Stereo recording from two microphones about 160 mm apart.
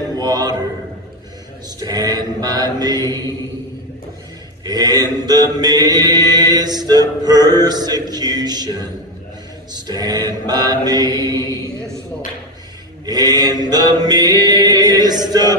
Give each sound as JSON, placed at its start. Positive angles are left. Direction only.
{"t": 0.1, "sound": "music", "side_deg": -25}
{"t": 1.8, "sound": "chant", "side_deg": -25}
{"t": 4.6, "sound": "chant", "side_deg": -25}
{"t": 9.8, "sound": "music", "side_deg": -25}
{"t": 10.4, "sound": "chant", "side_deg": -25}
{"t": 13.0, "sound": "chant", "side_deg": -25}